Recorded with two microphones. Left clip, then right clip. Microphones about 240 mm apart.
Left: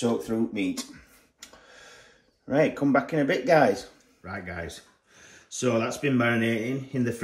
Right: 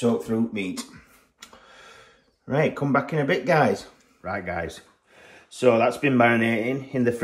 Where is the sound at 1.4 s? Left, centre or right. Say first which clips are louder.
Right 2 dB; right.